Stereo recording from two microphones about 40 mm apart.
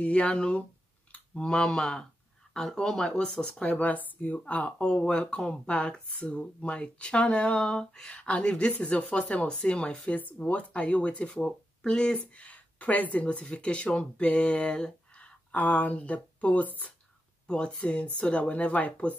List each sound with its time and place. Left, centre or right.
0.0 s speech: left; by 3.6 s centre
3.6 s speech: left
4.5 s speech: left; by 8.1 s centre
8.1 s speech: left
10.1 s speech: left
12.2 s speech: left
13.2 s speech: left
15.5 s speech: left
17.5 s speech: left